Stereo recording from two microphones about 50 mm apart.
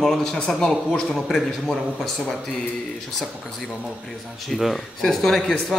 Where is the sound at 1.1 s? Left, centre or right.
Centre.